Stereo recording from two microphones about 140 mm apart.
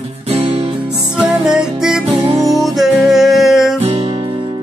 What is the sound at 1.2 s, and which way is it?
Music, 5° right (ahead or behind).